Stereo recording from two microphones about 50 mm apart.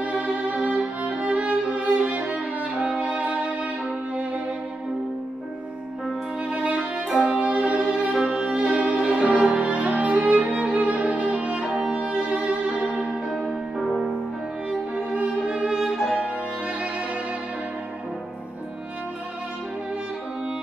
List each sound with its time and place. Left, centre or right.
0.0 s violin: right
6.5 s music: right
7.2 s violin: right
14.7 s music: right
15.8 s violin: centre